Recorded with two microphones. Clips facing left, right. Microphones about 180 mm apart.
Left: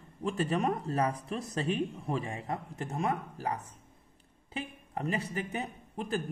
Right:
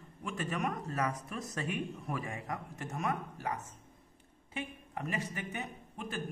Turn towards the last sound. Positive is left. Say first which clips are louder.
# left 6 dB
turn(degrees=35)  # may be behind; listen again after turning